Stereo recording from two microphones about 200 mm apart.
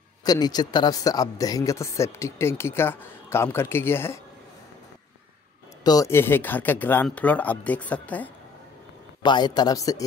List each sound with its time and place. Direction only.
0.2 s speech: 20° left (ahead or behind)
5.9 s speech: 15° left (ahead or behind)
9.2 s speech: 20° left (ahead or behind)